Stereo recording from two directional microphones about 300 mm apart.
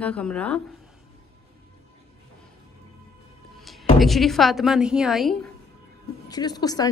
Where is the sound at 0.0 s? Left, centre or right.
Centre.